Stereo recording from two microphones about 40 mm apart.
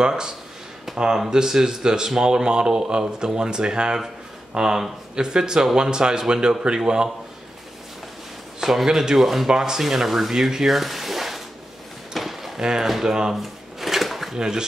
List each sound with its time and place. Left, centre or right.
0.0 s speech: centre
8.6 s speech: centre
12.1 s a sound: centre
12.5 s speech: centre
12.8 s speech: centre
13.3 s drawer open or close: centre
14.3 s speech: centre